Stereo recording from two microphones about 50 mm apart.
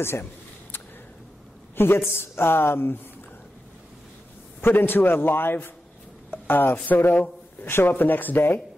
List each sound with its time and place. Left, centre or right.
0.0 s a sound: left
1.8 s speech: left
4.6 s speech: left